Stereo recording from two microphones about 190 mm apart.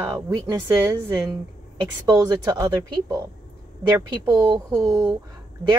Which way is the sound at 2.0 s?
20° right (ahead or behind).